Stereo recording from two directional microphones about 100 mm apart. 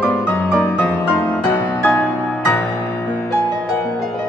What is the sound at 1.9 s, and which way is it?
Music, 25° left (ahead or behind).